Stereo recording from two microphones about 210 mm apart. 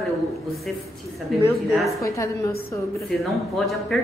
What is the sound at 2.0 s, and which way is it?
A woman's voice, 15° left (ahead or behind).